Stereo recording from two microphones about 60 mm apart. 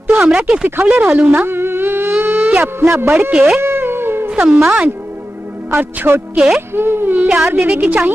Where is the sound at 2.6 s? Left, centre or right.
Right.